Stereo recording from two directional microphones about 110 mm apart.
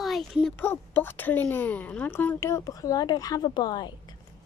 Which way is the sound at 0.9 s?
20° left (ahead or behind).